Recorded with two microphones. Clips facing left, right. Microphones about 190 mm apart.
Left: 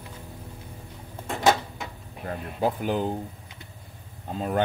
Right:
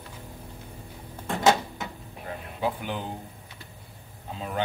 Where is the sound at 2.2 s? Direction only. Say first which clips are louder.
Left 3 dB; 40° left (ahead or behind).